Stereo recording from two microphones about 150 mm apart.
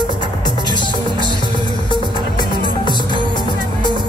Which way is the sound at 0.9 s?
30° right (ahead or behind).